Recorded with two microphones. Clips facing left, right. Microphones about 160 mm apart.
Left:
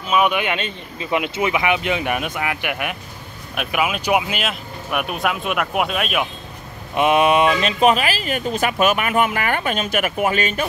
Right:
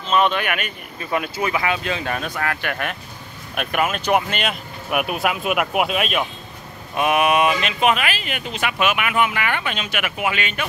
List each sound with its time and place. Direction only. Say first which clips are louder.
0.1 s speech: left 1 dB; 10° left (ahead or behind)
7.0 s speech: left 2 dB; 25° left (ahead or behind)